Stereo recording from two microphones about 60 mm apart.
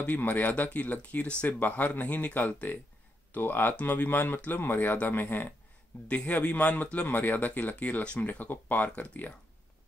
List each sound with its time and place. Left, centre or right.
0.0 s speech: left